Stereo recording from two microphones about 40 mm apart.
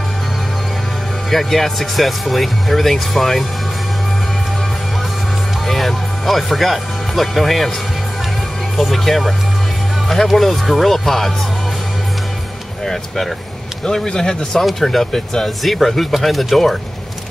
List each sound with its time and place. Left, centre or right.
1.3 s speech: centre
5.7 s speech: centre
8.7 s speech: centre
12.8 s a man's voice: centre
14.6 s speech: centre